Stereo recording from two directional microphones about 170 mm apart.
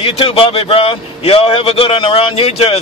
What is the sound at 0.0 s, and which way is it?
A man's voice, 35° left (ahead or behind).